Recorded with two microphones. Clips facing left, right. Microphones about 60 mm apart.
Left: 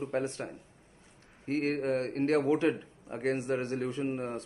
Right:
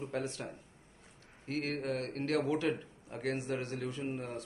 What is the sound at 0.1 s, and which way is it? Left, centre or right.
A man's voice, left.